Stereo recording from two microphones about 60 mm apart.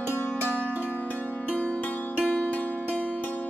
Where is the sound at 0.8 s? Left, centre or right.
Left.